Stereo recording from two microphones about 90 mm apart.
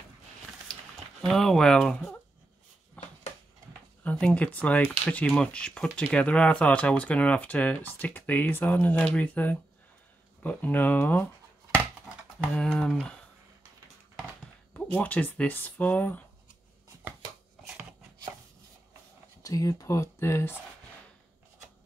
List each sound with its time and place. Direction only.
1.2 s speech: 5° left (ahead or behind)
3.0 s a sound: 15° left (ahead or behind)
4.0 s speech: 15° left (ahead or behind)
12.5 s speech: 15° left (ahead or behind)
15.0 s speech: 15° left (ahead or behind)
19.4 s speech: 40° left (ahead or behind)